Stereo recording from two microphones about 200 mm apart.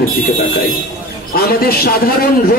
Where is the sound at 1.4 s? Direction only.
50° left (ahead or behind).